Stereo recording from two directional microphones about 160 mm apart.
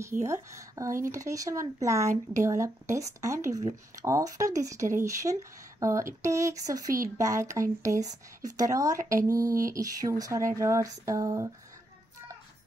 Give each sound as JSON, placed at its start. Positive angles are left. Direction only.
{"t": 0.2, "sound": "speech", "side_deg": -20}